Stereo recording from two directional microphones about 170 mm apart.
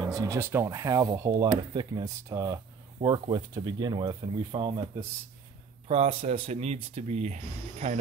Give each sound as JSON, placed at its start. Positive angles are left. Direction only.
{"t": 0.0, "sound": "speech", "side_deg": -20}
{"t": 5.9, "sound": "speech", "side_deg": -35}